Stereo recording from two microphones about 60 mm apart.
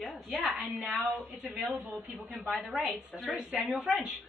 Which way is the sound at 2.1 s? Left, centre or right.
Right.